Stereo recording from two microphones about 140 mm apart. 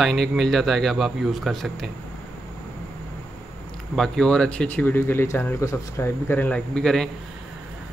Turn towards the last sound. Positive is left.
turn(degrees=5)  # may be behind; listen again after turning